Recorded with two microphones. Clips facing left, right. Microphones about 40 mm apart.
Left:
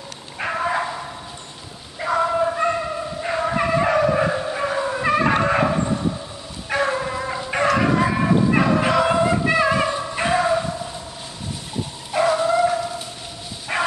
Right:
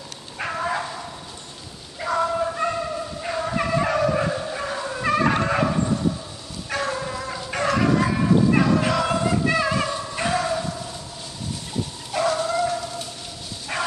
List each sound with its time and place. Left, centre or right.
0.5 s bow-wow: centre
2.0 s a sound: centre
3.2 s dog: centre
6.7 s bow-wow: centre
12.1 s dog: centre
13.7 s bow-wow: centre